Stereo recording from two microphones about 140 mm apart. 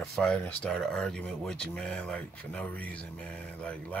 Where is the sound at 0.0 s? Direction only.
5° left (ahead or behind).